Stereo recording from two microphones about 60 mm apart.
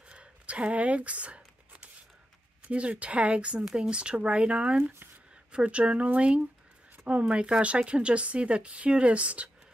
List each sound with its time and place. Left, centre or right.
0.1 s a sound: centre
2.7 s speech: centre
4.8 s speech: right
5.5 s speech: centre